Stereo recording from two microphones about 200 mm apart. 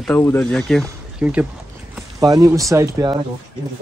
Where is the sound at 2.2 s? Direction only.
20° right (ahead or behind).